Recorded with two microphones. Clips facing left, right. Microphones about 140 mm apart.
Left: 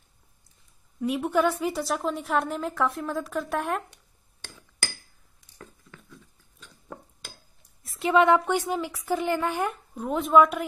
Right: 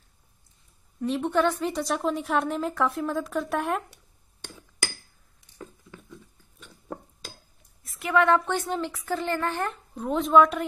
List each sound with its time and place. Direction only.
1.0 s a woman's voice: 10° left (ahead or behind)
5.6 s a sound: 15° right (ahead or behind)
8.0 s speech: 20° left (ahead or behind)